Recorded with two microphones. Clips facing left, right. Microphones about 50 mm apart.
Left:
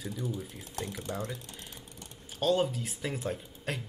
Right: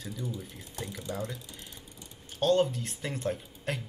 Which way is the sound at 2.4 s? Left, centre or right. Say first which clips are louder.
Right 2 dB; centre.